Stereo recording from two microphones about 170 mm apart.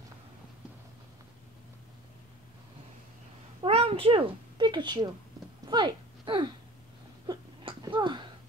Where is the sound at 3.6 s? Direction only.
35° right (ahead or behind).